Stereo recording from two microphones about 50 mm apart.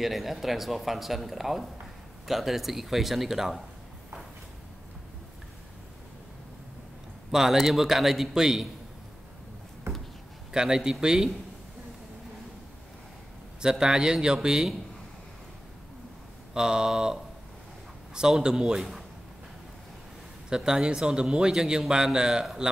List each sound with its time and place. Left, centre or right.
0.0 s speech: centre
7.2 s a man's voice: centre
10.5 s a man's voice: centre
13.6 s a man's voice: centre
16.5 s a man's voice: centre
20.4 s a man's voice: centre